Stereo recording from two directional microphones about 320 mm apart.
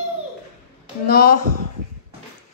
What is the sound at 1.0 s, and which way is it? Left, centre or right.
Speech, left.